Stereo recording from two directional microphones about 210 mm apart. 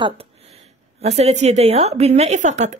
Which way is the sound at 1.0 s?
30° right (ahead or behind).